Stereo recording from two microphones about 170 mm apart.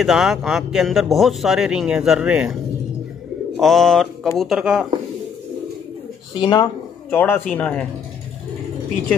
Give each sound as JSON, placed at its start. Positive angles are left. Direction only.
{"t": 0.0, "sound": "speech", "side_deg": 0}
{"t": 3.5, "sound": "speech", "side_deg": 0}
{"t": 6.3, "sound": "speech", "side_deg": 25}
{"t": 7.1, "sound": "speech", "side_deg": 10}